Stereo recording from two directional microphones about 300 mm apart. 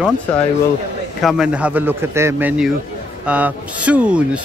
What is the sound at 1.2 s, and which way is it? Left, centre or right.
Speech, centre.